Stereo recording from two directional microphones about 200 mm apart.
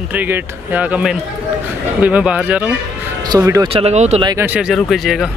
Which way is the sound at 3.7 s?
30° right (ahead or behind).